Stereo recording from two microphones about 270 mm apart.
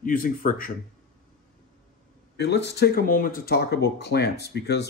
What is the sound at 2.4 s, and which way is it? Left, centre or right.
Speech, left.